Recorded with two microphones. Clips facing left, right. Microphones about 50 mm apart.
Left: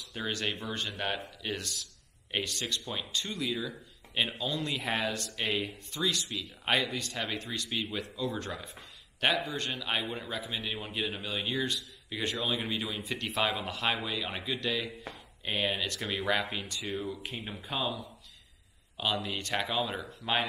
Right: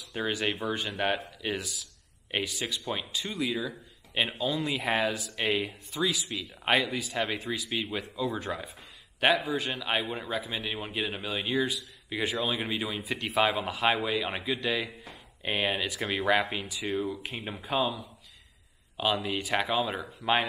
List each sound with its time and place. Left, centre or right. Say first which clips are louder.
0.1 s a man's voice: right 4 dB; centre
17.6 s a man's voice: right 5 dB; centre